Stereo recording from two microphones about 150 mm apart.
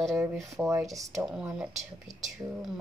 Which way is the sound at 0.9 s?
20° right (ahead or behind).